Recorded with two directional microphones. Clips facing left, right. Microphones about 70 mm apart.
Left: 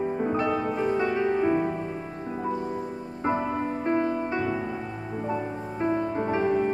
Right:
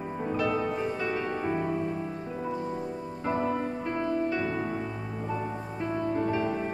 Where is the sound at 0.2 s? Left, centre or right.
Left.